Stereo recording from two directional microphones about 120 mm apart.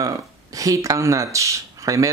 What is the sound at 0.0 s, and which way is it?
Speech, 30° right (ahead or behind).